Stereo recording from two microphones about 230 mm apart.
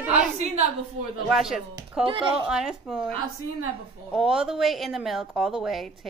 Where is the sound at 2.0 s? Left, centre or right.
Right.